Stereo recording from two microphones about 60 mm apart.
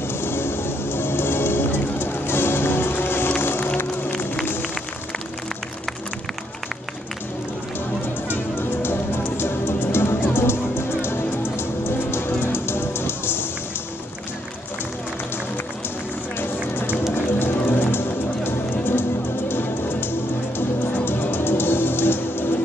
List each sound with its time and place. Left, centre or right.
0.2 s music: left
8.3 s music: left
16.3 s run: left
17.4 s music: left